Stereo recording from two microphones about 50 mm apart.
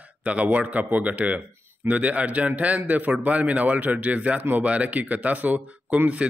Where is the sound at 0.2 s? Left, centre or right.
Right.